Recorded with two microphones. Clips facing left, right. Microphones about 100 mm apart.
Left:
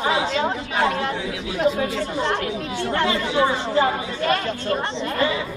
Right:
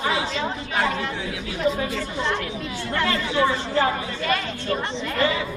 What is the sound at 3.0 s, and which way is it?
Speech, 15° left (ahead or behind).